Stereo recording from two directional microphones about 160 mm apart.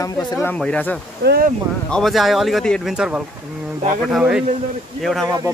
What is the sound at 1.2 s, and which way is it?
Speech, 75° right (ahead or behind).